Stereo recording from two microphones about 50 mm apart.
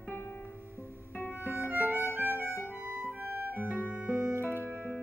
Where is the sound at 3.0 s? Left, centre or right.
Right.